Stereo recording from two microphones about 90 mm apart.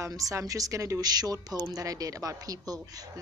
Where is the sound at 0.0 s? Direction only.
40° right (ahead or behind).